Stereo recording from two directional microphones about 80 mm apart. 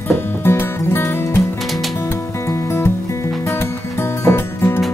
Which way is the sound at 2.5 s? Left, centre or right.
Left.